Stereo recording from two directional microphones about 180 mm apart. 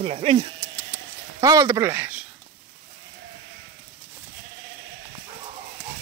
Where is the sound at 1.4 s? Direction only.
20° right (ahead or behind).